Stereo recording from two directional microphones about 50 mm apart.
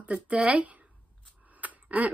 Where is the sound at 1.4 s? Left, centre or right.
Right.